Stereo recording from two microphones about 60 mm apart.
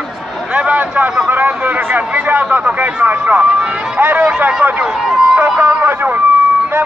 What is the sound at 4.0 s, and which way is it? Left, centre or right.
A man's voice, right.